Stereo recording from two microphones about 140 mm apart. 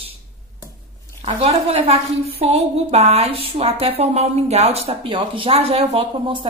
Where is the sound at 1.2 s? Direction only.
45° right (ahead or behind).